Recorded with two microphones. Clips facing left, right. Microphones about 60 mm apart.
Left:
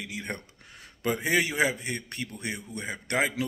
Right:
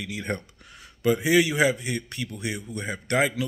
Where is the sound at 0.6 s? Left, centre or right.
Left.